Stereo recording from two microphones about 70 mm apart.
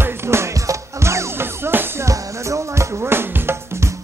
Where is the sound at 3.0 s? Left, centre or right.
Right.